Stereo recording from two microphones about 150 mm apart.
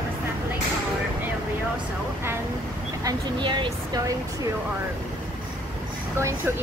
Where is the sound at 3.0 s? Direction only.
30° right (ahead or behind).